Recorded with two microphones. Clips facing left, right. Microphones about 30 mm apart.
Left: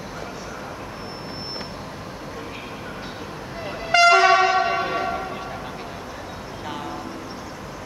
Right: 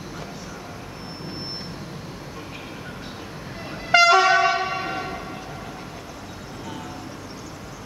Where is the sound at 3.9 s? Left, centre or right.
Centre.